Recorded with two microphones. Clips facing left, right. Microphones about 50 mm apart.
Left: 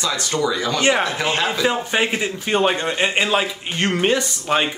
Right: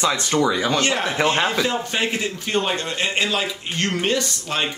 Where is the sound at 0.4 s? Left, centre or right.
Right.